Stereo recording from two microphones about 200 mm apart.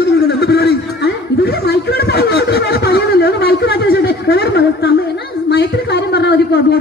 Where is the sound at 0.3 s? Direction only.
55° left (ahead or behind).